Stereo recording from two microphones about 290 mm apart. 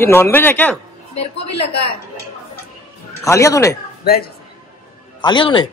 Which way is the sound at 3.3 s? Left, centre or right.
Centre.